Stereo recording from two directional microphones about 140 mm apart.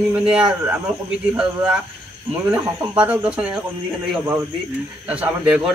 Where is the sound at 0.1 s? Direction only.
5° right (ahead or behind).